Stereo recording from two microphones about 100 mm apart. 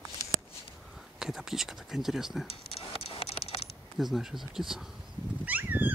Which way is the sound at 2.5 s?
80° left.